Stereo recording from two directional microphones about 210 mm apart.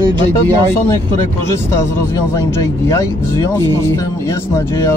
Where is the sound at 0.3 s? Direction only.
10° left (ahead or behind).